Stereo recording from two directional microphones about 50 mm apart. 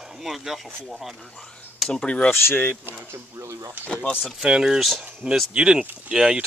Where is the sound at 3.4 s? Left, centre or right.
Right.